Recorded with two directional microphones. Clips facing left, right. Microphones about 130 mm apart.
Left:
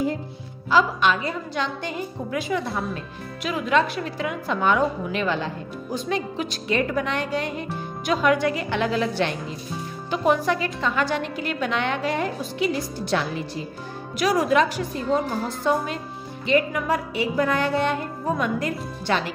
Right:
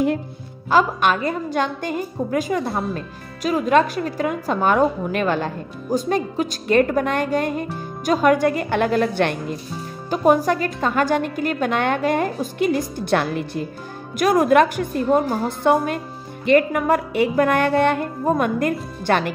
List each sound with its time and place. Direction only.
0.7 s a woman's voice: 50° right (ahead or behind)
10.0 s a woman's voice: 45° right (ahead or behind)